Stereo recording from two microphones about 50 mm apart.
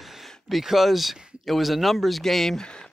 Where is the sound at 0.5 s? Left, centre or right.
Centre.